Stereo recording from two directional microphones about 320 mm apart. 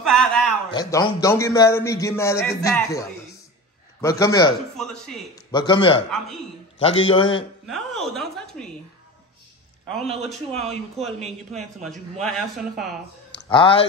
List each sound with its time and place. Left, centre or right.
0.0 s a sound: centre
0.7 s a man's voice: centre
5.5 s a man's voice: centre
7.6 s a woman's voice: centre
10.0 s a man's voice: centre
11.5 s speech: centre
13.3 s speech: centre